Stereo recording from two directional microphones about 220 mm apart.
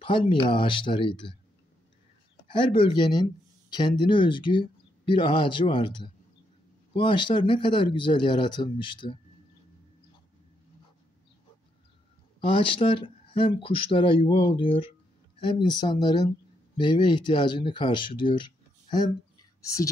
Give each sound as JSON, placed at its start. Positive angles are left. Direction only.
{"t": 0.0, "sound": "speech", "side_deg": 25}
{"t": 2.5, "sound": "speech", "side_deg": 20}
{"t": 12.5, "sound": "speech", "side_deg": 25}